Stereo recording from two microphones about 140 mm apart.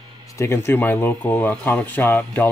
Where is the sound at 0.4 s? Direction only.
20° left (ahead or behind).